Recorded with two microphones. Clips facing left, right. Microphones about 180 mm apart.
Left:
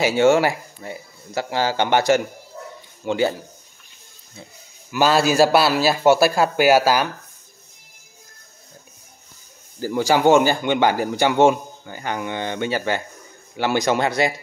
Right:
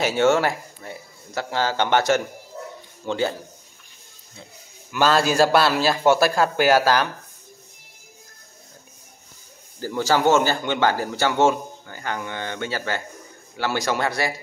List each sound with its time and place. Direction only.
0.0 s speech: 10° left (ahead or behind)
4.9 s speech: 10° left (ahead or behind)
9.8 s a man's voice: 15° left (ahead or behind)